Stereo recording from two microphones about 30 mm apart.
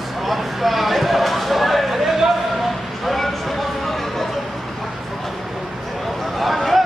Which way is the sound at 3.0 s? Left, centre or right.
Centre.